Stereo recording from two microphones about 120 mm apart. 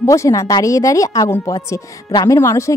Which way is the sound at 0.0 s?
25° left (ahead or behind).